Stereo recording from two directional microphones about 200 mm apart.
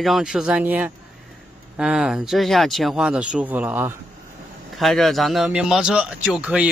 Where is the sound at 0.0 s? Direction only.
Centre (ahead or behind).